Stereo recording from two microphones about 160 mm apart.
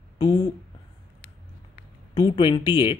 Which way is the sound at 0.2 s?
25° left (ahead or behind).